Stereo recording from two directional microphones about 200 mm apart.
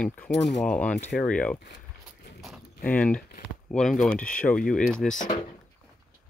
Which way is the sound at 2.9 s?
5° left (ahead or behind).